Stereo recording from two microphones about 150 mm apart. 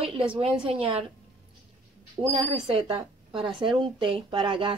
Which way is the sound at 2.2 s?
35° right (ahead or behind).